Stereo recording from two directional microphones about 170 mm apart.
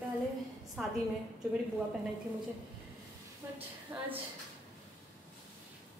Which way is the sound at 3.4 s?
15° right (ahead or behind).